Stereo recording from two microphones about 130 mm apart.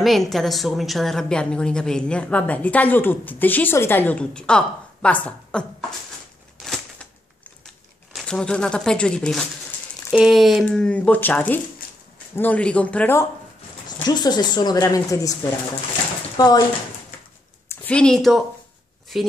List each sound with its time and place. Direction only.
0.0 s a woman's voice: centre (ahead or behind)
6.6 s crumpling: 5° left (ahead or behind)
10.1 s a sound: centre (ahead or behind)
10.6 s a woman's voice: 10° left (ahead or behind)
14.0 s speech: 35° left (ahead or behind)
16.3 s speech: 30° left (ahead or behind)
17.6 s speech: 10° left (ahead or behind)